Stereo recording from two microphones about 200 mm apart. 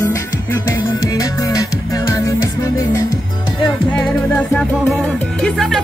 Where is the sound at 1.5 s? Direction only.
15° left (ahead or behind).